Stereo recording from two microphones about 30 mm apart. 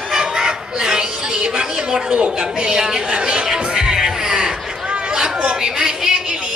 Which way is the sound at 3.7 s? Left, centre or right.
Right.